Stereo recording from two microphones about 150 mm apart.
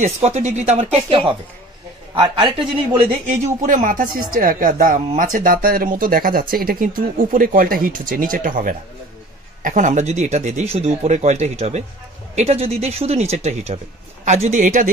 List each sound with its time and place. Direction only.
0.0 s speech: 50° right (ahead or behind)
2.5 s speech: 35° right (ahead or behind)
3.3 s speech: 55° right (ahead or behind)